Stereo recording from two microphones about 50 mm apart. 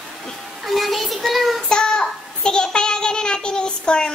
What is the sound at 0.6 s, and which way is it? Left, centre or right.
Child singing, centre.